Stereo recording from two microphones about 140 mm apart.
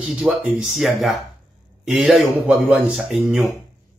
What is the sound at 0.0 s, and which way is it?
Speech, 10° right (ahead or behind).